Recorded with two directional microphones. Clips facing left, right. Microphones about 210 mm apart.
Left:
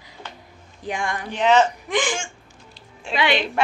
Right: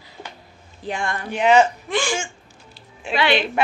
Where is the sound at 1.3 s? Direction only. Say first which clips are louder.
Right 2 dB; 10° right (ahead or behind).